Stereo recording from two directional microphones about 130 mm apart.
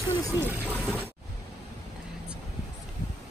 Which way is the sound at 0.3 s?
20° right (ahead or behind).